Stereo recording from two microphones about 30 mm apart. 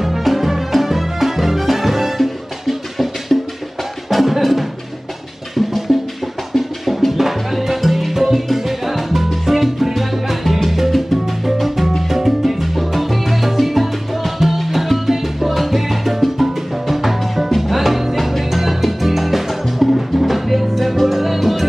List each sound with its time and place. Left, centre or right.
0.0 s music: centre
5.9 s music: centre
7.1 s music: centre
8.5 s salsa music: centre
11.5 s music: centre
12.1 s salsa music: centre
14.6 s music: centre